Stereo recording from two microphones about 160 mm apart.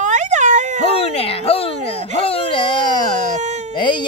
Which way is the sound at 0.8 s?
35° left (ahead or behind).